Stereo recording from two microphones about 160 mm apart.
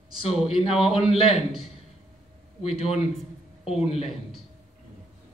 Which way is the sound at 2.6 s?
40° left (ahead or behind).